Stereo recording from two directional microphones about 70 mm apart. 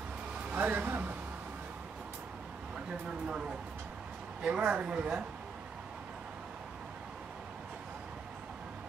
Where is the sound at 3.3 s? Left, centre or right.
Centre.